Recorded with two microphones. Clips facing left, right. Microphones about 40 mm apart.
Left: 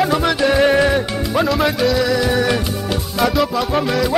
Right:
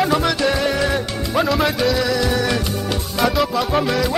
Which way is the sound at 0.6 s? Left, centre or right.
Left.